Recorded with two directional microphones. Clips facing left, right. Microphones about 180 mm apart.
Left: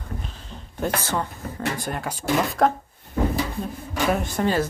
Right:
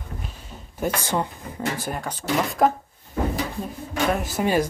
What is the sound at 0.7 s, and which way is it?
Speech, 10° right (ahead or behind).